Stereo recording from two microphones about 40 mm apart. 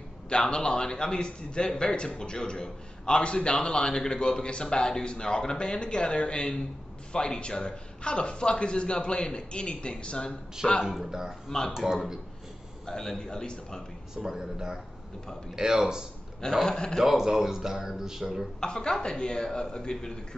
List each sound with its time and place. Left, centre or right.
0.3 s a man's voice: left
10.8 s speech: centre
11.4 s a man's voice: centre
11.7 s speech: centre
12.8 s a man's voice: centre
14.1 s speech: centre
16.6 s a man's voice: centre
17.0 s speech: centre
18.6 s a man's voice: centre